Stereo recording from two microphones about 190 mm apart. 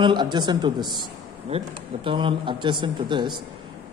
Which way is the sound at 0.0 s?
25° right (ahead or behind).